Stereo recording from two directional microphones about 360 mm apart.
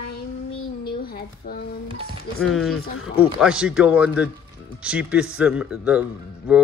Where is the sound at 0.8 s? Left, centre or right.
Left.